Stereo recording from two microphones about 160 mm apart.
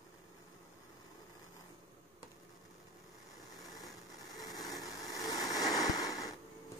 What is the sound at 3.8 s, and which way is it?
Vehicle, 25° left (ahead or behind).